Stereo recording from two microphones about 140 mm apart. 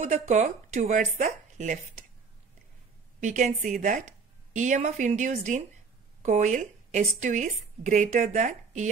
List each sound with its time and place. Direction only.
0.0 s a woman's voice: 60° right (ahead or behind)
3.2 s a woman's voice: 60° right (ahead or behind)